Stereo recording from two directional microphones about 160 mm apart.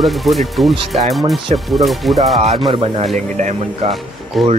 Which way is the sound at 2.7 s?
35° right (ahead or behind).